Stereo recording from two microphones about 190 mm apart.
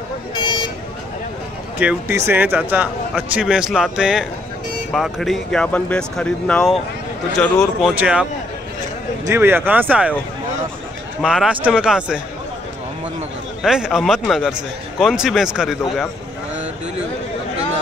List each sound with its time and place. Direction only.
0.3 s vehicle: 20° left (ahead or behind)
1.8 s a man's voice: 10° right (ahead or behind)
11.2 s a man's voice: 5° right (ahead or behind)
13.6 s a man's voice: 5° right (ahead or behind)